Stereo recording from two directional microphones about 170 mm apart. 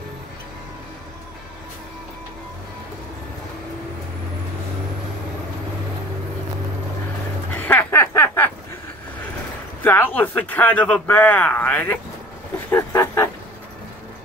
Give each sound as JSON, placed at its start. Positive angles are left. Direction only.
{"t": 7.5, "sound": "snicker", "side_deg": 10}
{"t": 9.8, "sound": "a man's voice", "side_deg": 10}
{"t": 12.7, "sound": "a sound", "side_deg": 15}